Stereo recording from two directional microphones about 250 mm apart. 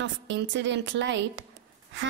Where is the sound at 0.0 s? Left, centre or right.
Right.